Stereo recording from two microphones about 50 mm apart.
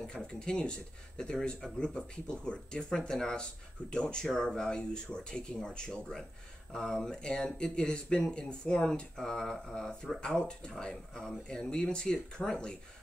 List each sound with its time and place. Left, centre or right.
0.0 s speech: centre
10.2 s speech: centre